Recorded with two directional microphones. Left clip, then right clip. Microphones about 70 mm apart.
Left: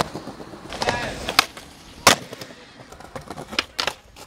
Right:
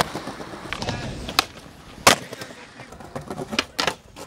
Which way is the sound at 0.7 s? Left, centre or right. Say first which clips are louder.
Left 8 dB; left.